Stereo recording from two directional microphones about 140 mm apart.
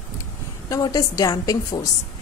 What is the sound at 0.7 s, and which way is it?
A woman's voice, 25° left (ahead or behind).